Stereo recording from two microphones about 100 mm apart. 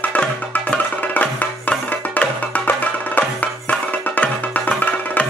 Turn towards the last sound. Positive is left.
turn(degrees=15)  # may be behind; listen again after turning